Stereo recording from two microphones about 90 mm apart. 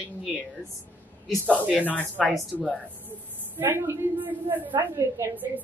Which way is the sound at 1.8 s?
20° left (ahead or behind).